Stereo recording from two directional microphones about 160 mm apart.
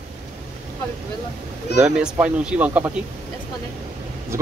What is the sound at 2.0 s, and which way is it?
Speech, 5° right (ahead or behind).